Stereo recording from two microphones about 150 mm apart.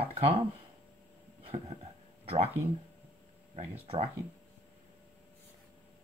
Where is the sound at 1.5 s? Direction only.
50° right (ahead or behind).